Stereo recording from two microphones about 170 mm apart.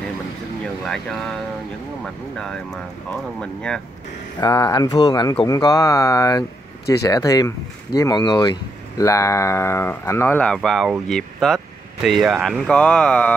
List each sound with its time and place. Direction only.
2.3 s speech: 5° left (ahead or behind)
4.4 s speech: 20° left (ahead or behind)